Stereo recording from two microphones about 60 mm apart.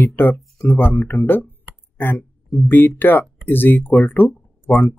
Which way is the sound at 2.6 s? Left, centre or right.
Left.